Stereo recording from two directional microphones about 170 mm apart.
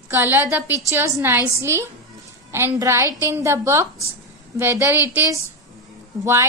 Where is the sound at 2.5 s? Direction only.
15° right (ahead or behind).